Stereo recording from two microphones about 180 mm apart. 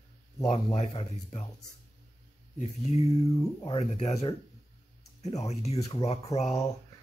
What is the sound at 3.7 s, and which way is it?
Speech, 35° left (ahead or behind).